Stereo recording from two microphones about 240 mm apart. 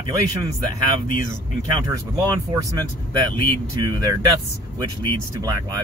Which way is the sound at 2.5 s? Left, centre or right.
Centre.